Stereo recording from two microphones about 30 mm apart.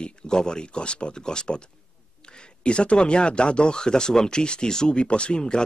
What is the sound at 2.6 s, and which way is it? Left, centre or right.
Speech, left.